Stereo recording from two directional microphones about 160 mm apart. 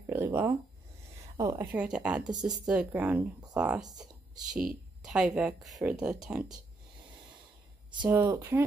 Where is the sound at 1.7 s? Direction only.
5° right (ahead or behind).